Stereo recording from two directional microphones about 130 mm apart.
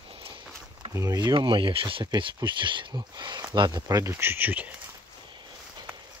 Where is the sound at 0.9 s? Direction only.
30° right (ahead or behind); by 4.7 s 15° right (ahead or behind).